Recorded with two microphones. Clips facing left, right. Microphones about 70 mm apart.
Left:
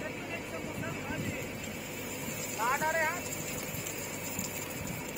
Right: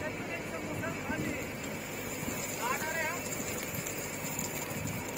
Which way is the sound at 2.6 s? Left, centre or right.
Left.